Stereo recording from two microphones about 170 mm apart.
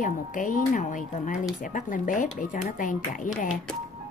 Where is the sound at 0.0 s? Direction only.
50° left (ahead or behind).